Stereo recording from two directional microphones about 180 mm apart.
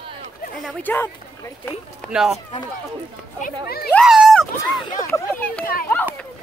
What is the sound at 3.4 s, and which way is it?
Speech, 60° left (ahead or behind).